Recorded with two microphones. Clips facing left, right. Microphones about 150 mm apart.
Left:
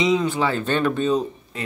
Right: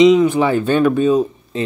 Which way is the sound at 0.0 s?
15° right (ahead or behind).